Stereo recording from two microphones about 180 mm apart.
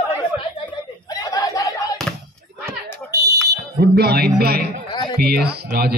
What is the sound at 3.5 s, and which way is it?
Speech, 60° right (ahead or behind).